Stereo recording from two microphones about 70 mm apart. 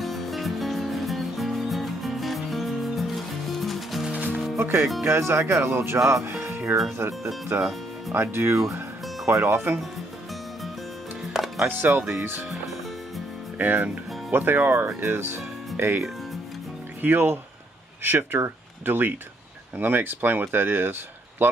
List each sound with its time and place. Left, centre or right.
0.0 s music: centre
4.1 s music: right
4.6 s speech: right
6.7 s speech: right
11.3 s music: centre
11.6 s speech: right
13.6 s speech: right
17.0 s speech: right